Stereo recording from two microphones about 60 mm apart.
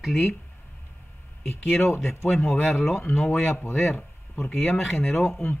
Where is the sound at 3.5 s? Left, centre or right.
Left.